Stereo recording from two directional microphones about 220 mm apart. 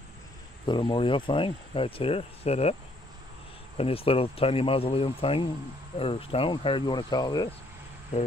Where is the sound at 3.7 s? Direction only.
25° left (ahead or behind).